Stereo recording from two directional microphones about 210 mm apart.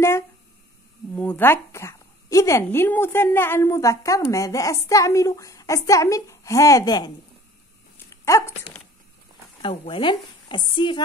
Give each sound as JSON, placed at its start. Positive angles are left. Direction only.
{"t": 1.1, "sound": "a woman's voice", "side_deg": 5}
{"t": 8.1, "sound": "speech", "side_deg": 15}
{"t": 9.6, "sound": "speech", "side_deg": 25}